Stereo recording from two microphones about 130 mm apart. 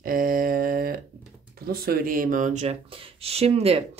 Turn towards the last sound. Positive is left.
turn(degrees=-50)  # may be behind; listen again after turning